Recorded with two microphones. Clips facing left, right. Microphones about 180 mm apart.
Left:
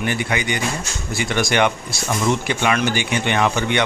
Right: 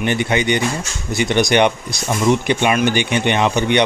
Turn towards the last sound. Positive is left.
turn(degrees=-20)  # may be behind; listen again after turning